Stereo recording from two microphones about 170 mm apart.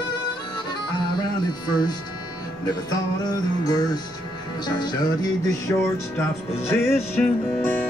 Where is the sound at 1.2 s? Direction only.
25° left (ahead or behind).